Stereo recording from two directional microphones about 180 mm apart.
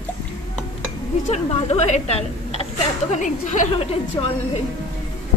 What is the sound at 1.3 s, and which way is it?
Speech, 40° left (ahead or behind).